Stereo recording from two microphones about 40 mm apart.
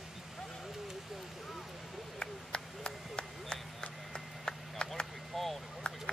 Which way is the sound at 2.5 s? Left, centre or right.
Left.